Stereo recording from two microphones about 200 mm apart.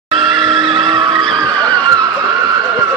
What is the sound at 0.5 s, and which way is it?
Vehicle, 25° right (ahead or behind).